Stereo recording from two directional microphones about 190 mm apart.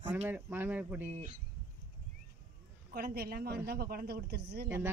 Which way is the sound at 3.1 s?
55° right (ahead or behind).